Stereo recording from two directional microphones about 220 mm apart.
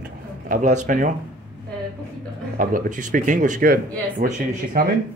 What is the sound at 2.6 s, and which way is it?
Speech, 35° right (ahead or behind).